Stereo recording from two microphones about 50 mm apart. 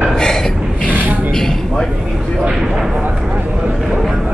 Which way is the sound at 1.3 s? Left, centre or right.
Centre.